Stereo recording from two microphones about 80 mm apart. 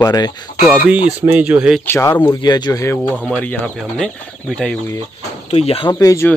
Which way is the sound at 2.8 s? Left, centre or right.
Left.